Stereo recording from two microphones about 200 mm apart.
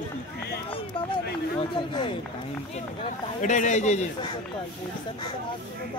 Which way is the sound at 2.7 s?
35° left (ahead or behind).